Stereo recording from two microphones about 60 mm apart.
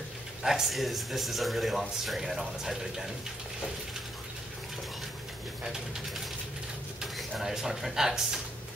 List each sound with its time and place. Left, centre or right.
0.4 s speech: centre
7.2 s speech: centre